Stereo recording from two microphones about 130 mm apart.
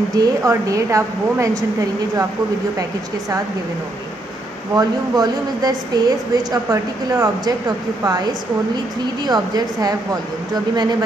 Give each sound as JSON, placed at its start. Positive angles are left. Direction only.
{"t": 0.1, "sound": "speech", "side_deg": -25}
{"t": 4.7, "sound": "a woman's voice", "side_deg": -30}